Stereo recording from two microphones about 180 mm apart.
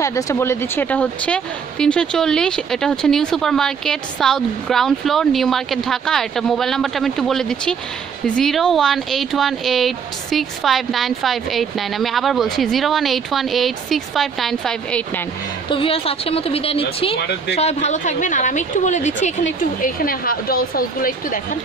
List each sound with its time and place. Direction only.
0.0 s speech: 15° left (ahead or behind)
15.7 s a woman's voice: 30° left (ahead or behind); by 21.4 s 55° left (ahead or behind)